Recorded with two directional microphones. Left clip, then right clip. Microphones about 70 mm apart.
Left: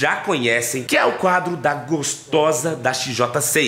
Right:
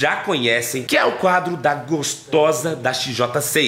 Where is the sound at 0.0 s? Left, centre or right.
Centre.